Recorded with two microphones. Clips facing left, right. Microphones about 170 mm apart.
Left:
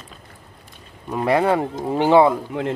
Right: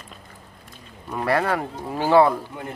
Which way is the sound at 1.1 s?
20° left (ahead or behind).